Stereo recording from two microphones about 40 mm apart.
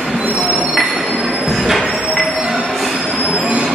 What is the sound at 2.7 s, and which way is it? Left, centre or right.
Train, centre.